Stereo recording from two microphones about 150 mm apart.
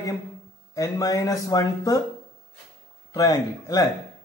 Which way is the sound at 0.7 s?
20° left (ahead or behind).